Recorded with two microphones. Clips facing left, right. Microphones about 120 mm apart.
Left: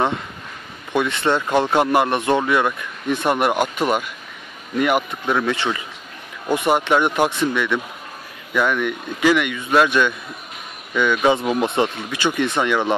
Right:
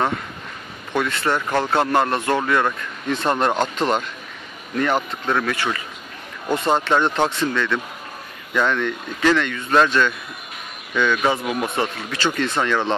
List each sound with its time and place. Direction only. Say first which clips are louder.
0.9 s speech: left 2 dB; 20° left (ahead or behind)